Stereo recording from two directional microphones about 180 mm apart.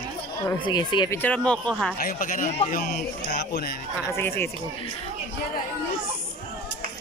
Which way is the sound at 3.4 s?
65° left (ahead or behind).